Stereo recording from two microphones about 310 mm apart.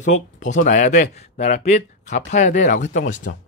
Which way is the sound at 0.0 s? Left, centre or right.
Left.